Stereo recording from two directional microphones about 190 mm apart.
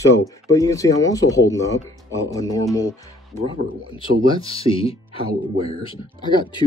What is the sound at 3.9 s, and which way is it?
Speech, 25° left (ahead or behind).